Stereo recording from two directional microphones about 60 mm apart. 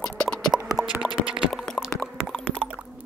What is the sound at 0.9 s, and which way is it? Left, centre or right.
Music, centre.